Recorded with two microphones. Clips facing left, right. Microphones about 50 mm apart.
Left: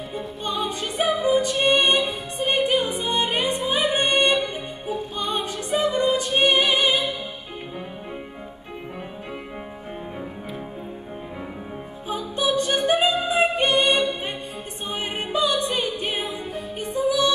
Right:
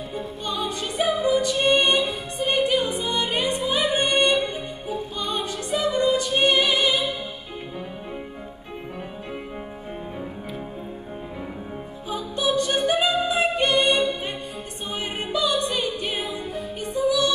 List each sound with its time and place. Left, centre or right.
0.1 s music: left
12.2 s music: left
12.5 s music: left